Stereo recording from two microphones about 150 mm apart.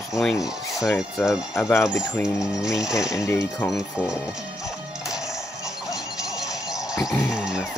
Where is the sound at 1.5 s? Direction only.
15° left (ahead or behind).